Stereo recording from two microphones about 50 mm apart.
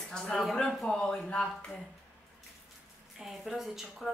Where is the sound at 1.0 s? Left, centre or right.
Left.